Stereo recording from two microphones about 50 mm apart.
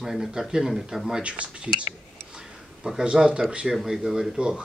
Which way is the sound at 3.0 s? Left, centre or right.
Centre.